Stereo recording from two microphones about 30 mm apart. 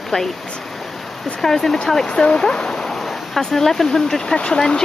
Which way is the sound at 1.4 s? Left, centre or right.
Centre.